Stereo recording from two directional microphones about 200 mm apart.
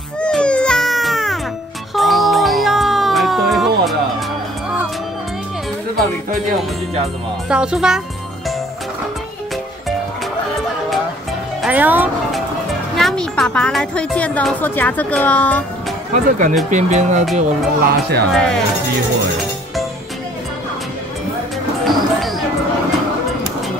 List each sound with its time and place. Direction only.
0.2 s baby cry: 5° left (ahead or behind)
2.0 s music: centre (ahead or behind)
7.4 s speech: 5° right (ahead or behind)
11.6 s speech: 10° right (ahead or behind)
12.9 s a woman's voice: centre (ahead or behind)
16.1 s speech: 40° right (ahead or behind)
17.4 s speech: 50° right (ahead or behind)
18.3 s speech: 5° left (ahead or behind)